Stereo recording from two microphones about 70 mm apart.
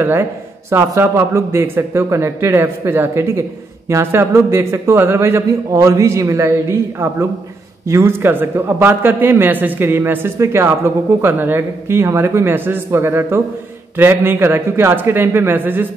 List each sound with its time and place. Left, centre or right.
0.0 s a man's voice: right